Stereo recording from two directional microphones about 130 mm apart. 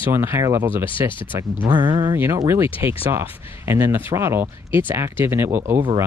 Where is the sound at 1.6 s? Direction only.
40° right (ahead or behind).